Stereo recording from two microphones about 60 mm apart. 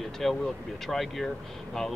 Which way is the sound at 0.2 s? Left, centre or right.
Centre.